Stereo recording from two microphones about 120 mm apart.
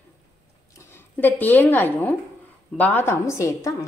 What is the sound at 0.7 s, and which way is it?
A woman's voice, 20° left (ahead or behind).